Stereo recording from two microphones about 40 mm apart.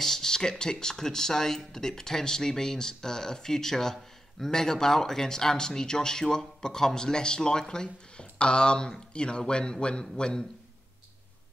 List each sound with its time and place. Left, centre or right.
0.0 s a man's voice: centre